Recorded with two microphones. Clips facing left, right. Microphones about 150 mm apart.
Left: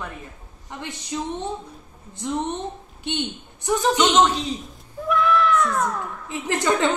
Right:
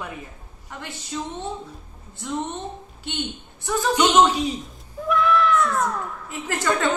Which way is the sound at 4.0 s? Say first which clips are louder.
Right 4 dB; 10° right (ahead or behind).